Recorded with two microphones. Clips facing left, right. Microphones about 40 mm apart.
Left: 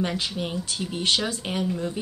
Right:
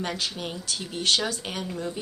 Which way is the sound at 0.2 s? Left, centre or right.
Centre.